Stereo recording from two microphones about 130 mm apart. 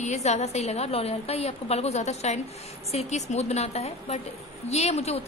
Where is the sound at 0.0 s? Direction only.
60° left (ahead or behind).